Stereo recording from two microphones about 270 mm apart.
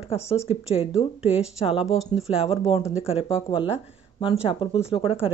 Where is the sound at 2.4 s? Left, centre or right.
Left.